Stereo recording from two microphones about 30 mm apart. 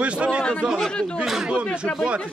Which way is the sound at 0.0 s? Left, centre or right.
Right.